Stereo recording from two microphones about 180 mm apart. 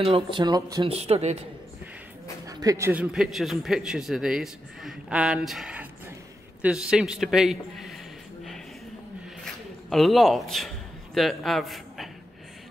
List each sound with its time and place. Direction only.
0.0 s speech: 30° right (ahead or behind)
0.8 s a man's voice: 35° right (ahead or behind)
2.4 s a man's voice: 20° right (ahead or behind); by 7.9 s centre (ahead or behind)
9.4 s a sound: centre (ahead or behind)
11.1 s a man's voice: centre (ahead or behind)